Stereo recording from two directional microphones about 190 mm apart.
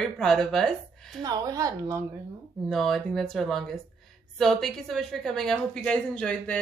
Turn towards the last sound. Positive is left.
turn(degrees=5)  # may be behind; listen again after turning